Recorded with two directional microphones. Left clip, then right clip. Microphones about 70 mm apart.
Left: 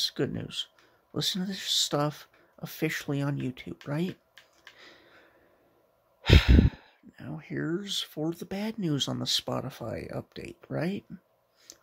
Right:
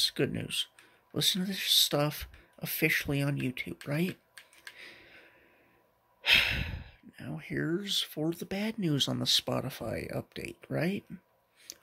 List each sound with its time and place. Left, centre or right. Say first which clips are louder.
0.0 s speech: even; left
2.1 s speech: right 4 dB; centre
4.7 s a sound: right 3 dB; left
6.2 s sigh: even; left
7.2 s speech: even; left
11.7 s a sound: right 3 dB; centre